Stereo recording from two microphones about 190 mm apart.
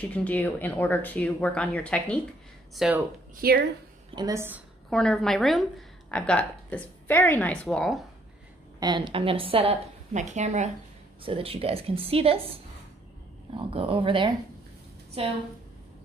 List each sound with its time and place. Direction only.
0.0 s speech: 5° left (ahead or behind)
3.3 s speech: 55° right (ahead or behind)
4.1 s a woman's voice: 20° right (ahead or behind)
4.8 s speech: 5° left (ahead or behind)
8.7 s a woman's voice: 25° right (ahead or behind)